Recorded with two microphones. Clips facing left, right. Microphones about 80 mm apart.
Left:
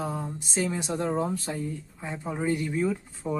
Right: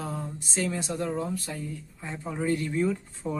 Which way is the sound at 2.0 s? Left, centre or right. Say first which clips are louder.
Left 1 dB; centre.